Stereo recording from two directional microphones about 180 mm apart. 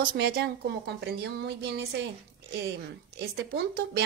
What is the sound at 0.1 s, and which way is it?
Speech, 65° right (ahead or behind).